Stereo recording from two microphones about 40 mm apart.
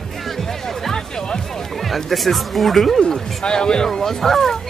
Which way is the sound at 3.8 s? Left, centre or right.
Centre.